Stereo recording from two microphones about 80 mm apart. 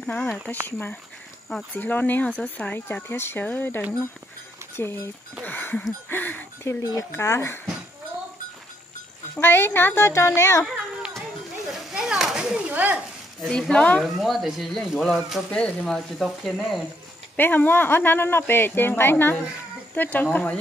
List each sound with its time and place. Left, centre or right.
0.0 s speech: centre
1.8 s a woman's voice: left
6.6 s a woman's voice: left
9.4 s a woman's voice: left
11.8 s a sound: centre
12.5 s speech: centre
13.5 s speech: centre
14.1 s speech: centre
15.5 s speech: centre
17.4 s speech: left